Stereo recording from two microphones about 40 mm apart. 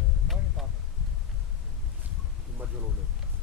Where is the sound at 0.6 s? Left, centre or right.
Centre.